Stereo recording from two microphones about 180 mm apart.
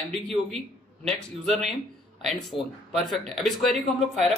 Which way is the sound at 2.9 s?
Centre (ahead or behind).